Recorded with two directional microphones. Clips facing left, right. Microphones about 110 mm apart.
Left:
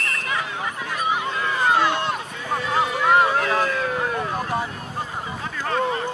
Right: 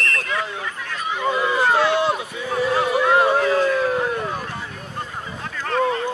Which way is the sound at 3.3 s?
5° right (ahead or behind).